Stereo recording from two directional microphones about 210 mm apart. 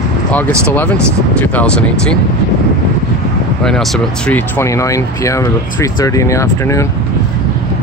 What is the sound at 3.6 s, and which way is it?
Speech, centre (ahead or behind).